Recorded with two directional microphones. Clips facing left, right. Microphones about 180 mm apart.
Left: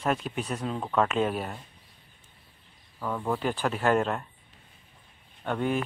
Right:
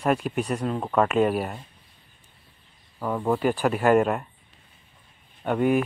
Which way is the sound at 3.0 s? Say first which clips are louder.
Right 5 dB; 15° right (ahead or behind).